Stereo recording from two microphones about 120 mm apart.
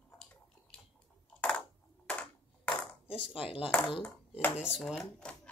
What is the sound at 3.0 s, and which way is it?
Dishes, 50° left (ahead or behind).